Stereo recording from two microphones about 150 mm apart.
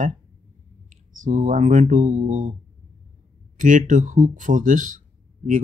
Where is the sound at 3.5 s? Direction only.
60° right (ahead or behind).